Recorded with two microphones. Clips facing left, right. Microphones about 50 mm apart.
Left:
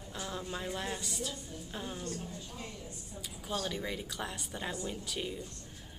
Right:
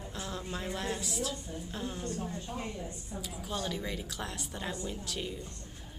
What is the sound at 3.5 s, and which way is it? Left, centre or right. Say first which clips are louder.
A woman's voice: left 1 dB; centre.